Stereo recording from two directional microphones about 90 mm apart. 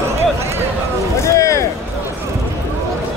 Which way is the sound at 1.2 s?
35° left (ahead or behind).